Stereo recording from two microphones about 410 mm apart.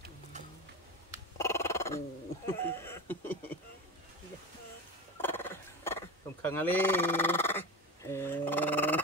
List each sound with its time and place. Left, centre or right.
1.4 s speech: centre
5.2 s wild animals: centre